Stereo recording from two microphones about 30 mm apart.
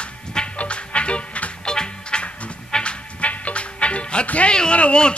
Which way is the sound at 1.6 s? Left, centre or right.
Left.